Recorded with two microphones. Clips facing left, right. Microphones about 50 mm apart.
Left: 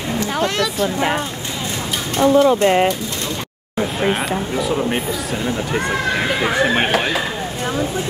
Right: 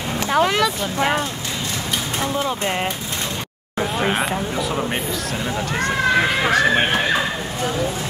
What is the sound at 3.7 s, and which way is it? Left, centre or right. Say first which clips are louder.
Speech: left 1 dB; centre.